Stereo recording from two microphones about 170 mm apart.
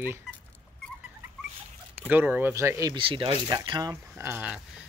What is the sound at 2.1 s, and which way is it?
Speech, 10° right (ahead or behind).